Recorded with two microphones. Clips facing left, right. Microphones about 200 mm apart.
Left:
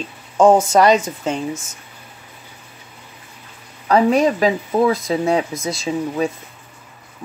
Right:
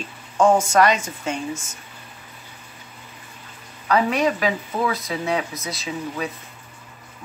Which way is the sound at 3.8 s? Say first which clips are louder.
Left 5 dB; 35° left (ahead or behind).